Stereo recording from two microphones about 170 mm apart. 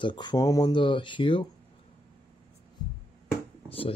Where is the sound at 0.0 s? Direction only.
25° left (ahead or behind).